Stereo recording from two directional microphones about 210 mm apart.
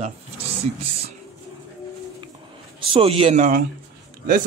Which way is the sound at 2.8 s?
25° right (ahead or behind).